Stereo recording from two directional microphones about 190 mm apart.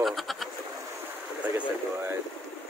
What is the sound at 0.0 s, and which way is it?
Bird, centre (ahead or behind).